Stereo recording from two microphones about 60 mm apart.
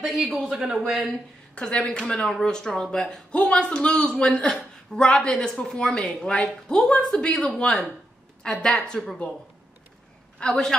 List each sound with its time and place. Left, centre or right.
0.0 s a man's voice: centre
1.5 s a woman's voice: centre
10.4 s a woman's voice: centre